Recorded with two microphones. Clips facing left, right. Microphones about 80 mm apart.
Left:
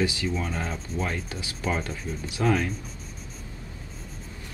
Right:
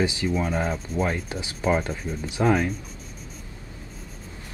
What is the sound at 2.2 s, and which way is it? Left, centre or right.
Speech, right.